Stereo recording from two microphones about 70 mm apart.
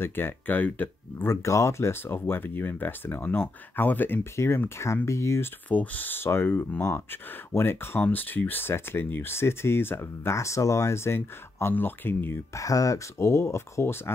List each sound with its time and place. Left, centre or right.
0.0 s speech: left
1.3 s speech: left
5.7 s speech: left
12.5 s speech: left